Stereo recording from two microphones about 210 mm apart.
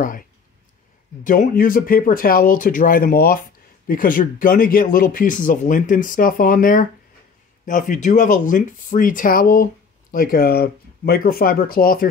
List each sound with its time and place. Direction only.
1.2 s speech: 40° left (ahead or behind)